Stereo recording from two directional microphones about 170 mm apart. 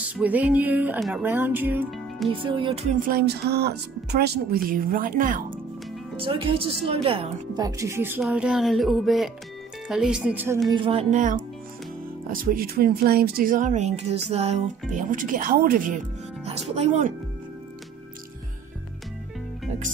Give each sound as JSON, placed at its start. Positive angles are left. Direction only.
{"t": 0.1, "sound": "music", "side_deg": -10}
{"t": 2.2, "sound": "music", "side_deg": -30}
{"t": 2.9, "sound": "speech", "side_deg": -60}
{"t": 4.6, "sound": "speech", "side_deg": -55}
{"t": 6.1, "sound": "a woman's voice", "side_deg": -30}
{"t": 8.2, "sound": "speech", "side_deg": -5}
{"t": 10.7, "sound": "music", "side_deg": -30}
{"t": 11.1, "sound": "speech", "side_deg": -50}
{"t": 16.4, "sound": "speech", "side_deg": -40}